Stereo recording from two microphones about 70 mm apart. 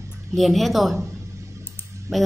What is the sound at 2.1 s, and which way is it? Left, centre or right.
Speech, right.